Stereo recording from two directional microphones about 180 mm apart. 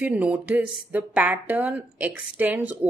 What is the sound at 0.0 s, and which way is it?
Speech, 10° right (ahead or behind).